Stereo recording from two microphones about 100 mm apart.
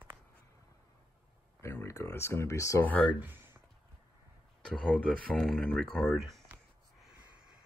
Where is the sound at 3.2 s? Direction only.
20° right (ahead or behind).